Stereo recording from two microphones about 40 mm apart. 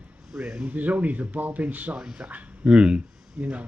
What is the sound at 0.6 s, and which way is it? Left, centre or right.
Speech, right.